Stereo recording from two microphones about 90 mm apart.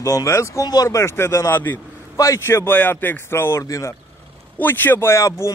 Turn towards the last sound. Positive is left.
turn(degrees=35)  # may be behind; listen again after turning